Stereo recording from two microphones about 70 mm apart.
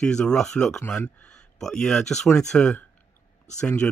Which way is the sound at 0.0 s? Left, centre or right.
Centre.